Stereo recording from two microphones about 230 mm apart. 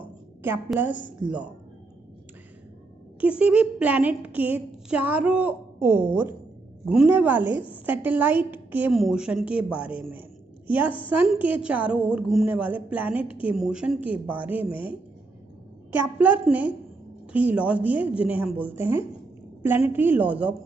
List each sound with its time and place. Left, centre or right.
0.0 s a sound: centre
1.2 s speech: centre
3.2 s a woman's voice: centre
14.7 s a woman's voice: left
15.9 s a woman's voice: centre